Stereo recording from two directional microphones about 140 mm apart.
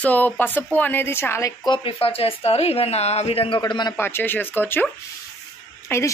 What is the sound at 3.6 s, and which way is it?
Speech, 30° left (ahead or behind).